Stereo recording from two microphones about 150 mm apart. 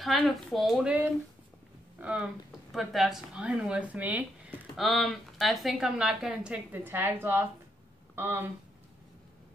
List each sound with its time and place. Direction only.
0.0 s speech: centre (ahead or behind)
2.0 s speech: 5° right (ahead or behind)